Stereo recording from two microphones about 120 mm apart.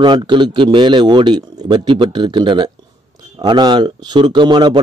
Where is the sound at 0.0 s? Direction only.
40° right (ahead or behind).